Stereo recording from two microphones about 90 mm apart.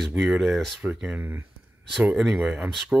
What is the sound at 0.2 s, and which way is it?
Speech, 5° right (ahead or behind).